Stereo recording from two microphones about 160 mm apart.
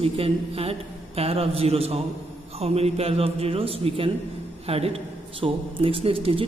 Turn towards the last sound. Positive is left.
turn(degrees=-35)  # may be behind; listen again after turning